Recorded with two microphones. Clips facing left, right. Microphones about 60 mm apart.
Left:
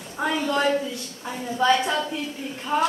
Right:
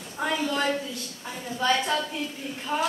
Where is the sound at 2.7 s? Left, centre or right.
Centre.